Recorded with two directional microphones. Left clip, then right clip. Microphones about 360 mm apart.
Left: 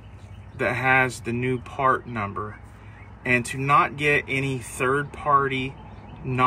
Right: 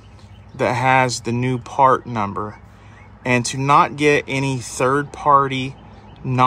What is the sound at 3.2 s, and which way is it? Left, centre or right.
Speech, right.